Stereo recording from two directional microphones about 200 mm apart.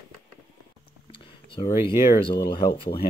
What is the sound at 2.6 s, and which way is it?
Speech, 25° left (ahead or behind).